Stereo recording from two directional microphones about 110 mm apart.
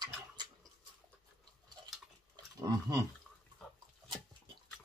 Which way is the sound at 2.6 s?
35° right (ahead or behind).